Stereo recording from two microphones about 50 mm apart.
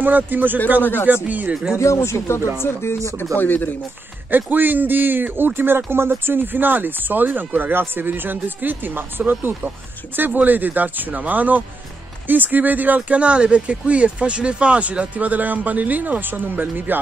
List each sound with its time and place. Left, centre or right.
0.0 s speech: right
1.8 s speech: left
3.3 s speech: left
4.3 s speech: right